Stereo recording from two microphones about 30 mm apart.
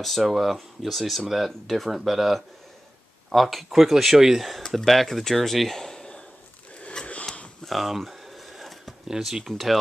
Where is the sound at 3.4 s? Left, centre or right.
Centre.